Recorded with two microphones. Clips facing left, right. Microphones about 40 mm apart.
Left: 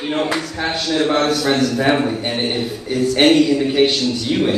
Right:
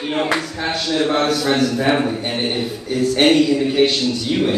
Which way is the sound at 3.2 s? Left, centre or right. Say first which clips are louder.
Left 1 dB; centre.